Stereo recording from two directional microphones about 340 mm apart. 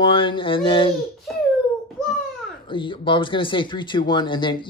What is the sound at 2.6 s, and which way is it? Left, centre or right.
Speech, centre.